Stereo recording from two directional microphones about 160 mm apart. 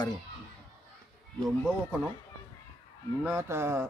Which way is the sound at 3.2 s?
15° right (ahead or behind).